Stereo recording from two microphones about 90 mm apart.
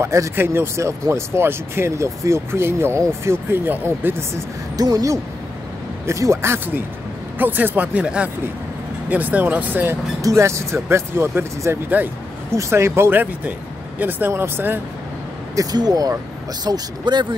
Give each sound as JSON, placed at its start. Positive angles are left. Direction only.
{"t": 0.0, "sound": "speech", "side_deg": -30}
{"t": 4.7, "sound": "speech", "side_deg": -45}
{"t": 10.2, "sound": "speech", "side_deg": -35}
{"t": 15.5, "sound": "speech", "side_deg": -45}